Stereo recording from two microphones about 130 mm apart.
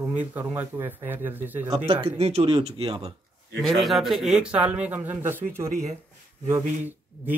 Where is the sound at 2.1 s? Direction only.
50° right (ahead or behind).